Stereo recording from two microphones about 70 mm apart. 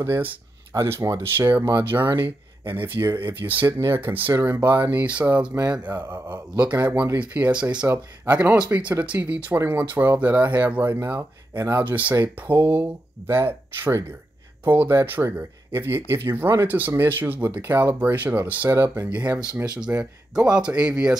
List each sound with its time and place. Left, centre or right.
0.0 s speech: right
3.6 s speech: right
6.9 s speech: right
7.2 s speech: right
18.7 s speech: right
19.0 s speech: right